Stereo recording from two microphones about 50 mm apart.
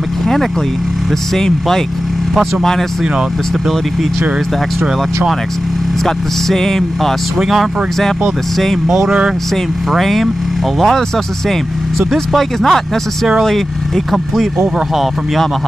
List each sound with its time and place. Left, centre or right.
1.3 s speech: centre
3.0 s speech: centre
6.0 s speech: centre
7.3 s speech: centre
8.8 s speech: centre
9.8 s speech: centre